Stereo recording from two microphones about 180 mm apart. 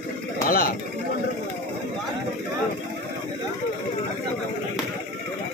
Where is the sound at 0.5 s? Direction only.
55° left (ahead or behind).